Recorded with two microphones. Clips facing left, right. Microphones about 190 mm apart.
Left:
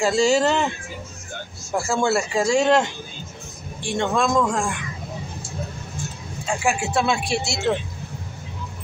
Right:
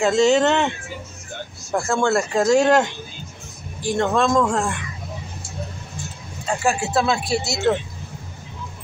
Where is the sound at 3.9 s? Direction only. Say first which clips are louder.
Right 2 dB; 10° left (ahead or behind).